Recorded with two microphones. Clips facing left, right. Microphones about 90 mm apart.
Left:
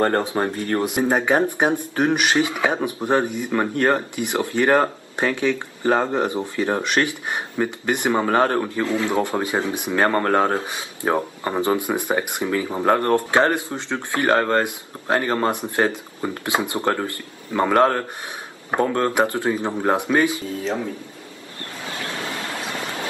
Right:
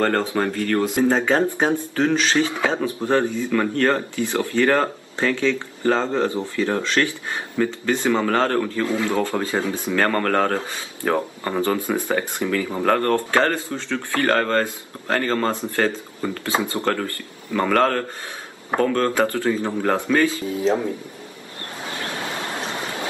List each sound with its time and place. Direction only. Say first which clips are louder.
0.0 s speech: even; 20° left (ahead or behind)
21.8 s vehicle: even; 30° right (ahead or behind)